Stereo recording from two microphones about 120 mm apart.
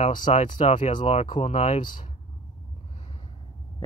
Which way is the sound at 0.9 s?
45° left (ahead or behind).